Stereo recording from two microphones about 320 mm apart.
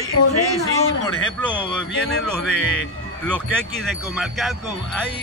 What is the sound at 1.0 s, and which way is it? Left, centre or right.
A man's voice, centre.